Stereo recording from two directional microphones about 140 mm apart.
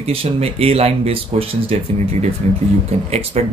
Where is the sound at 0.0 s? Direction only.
45° right (ahead or behind).